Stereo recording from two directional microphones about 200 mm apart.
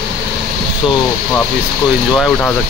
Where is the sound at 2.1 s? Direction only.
5° left (ahead or behind).